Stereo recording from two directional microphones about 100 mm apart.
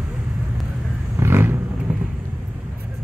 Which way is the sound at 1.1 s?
25° right (ahead or behind).